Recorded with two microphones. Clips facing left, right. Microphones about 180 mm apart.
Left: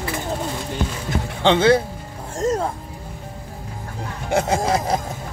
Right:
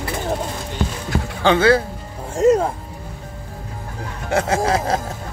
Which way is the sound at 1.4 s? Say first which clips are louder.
Even; 20° left (ahead or behind).